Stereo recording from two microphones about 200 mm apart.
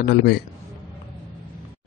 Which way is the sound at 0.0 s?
55° left (ahead or behind).